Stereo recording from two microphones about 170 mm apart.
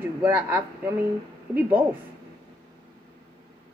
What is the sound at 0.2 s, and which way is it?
Speech, 10° right (ahead or behind).